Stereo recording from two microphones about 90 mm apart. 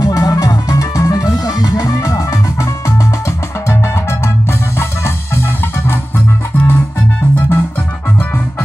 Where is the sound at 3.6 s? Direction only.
30° left (ahead or behind).